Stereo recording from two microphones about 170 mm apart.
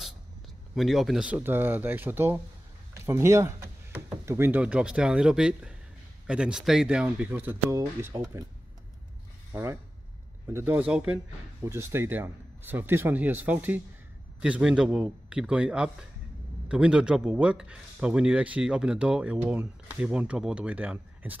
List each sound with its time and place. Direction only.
0.7 s speech: centre (ahead or behind); by 8.5 s 20° right (ahead or behind)
9.5 s a man's voice: 15° right (ahead or behind)